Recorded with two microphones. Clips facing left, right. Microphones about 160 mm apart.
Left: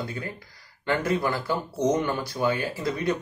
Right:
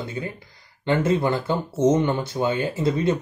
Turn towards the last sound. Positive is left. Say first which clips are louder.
# right 5 dB
turn(degrees=-25)  # may be behind; listen again after turning